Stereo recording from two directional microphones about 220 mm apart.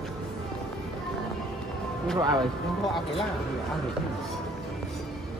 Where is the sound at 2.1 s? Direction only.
15° right (ahead or behind).